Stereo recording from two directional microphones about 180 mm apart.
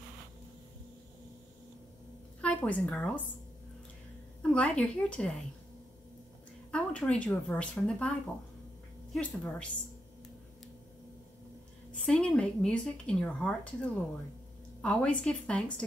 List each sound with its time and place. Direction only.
2.4 s a woman's voice: 5° left (ahead or behind)
4.4 s a woman's voice: 5° left (ahead or behind)
6.7 s speech: 5° left (ahead or behind)
9.1 s speech: 5° left (ahead or behind)
12.1 s speech: 5° left (ahead or behind)